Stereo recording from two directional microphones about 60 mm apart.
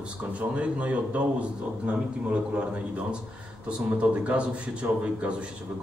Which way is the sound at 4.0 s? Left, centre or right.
Centre.